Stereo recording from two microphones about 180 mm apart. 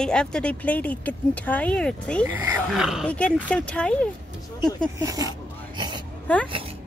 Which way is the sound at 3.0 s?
5° left (ahead or behind).